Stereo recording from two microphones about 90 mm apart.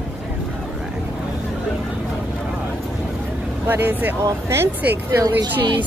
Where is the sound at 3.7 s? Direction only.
20° right (ahead or behind).